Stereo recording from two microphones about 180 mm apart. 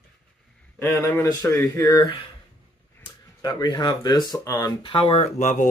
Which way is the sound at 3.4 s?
20° left (ahead or behind).